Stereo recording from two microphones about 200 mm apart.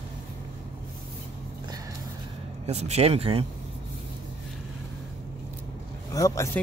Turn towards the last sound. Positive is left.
turn(degrees=15)  # may be behind; listen again after turning